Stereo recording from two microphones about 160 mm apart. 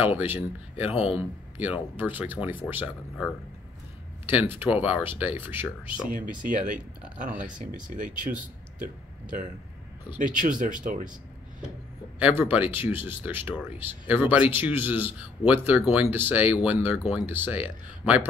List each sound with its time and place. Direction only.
0.2 s speech: 10° right (ahead or behind)
4.3 s speech: 10° right (ahead or behind)
6.0 s speech: 55° right (ahead or behind)
10.1 s speech: 55° right (ahead or behind)
12.2 s speech: 10° right (ahead or behind)